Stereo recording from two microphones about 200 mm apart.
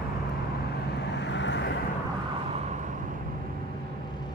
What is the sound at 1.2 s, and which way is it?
Vehicle, 60° left (ahead or behind).